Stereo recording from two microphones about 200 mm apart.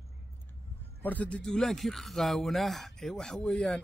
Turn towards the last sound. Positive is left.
turn(degrees=5)  # may be behind; listen again after turning